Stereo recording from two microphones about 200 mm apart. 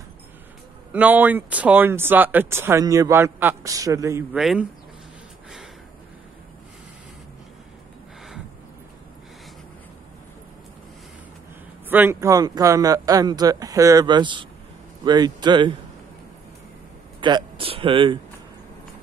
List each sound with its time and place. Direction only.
0.9 s speech: 10° right (ahead or behind)
4.4 s speech: centre (ahead or behind)
11.9 s a man's voice: 10° right (ahead or behind)
17.2 s speech: 20° right (ahead or behind)